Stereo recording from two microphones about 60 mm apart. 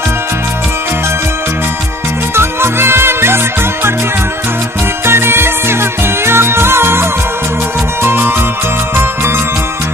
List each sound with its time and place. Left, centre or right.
2.3 s music: right
5.0 s music: right